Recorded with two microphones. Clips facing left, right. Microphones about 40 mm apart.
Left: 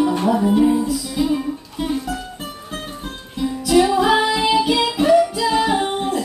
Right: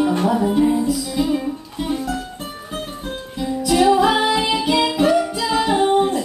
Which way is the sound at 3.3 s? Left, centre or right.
Centre.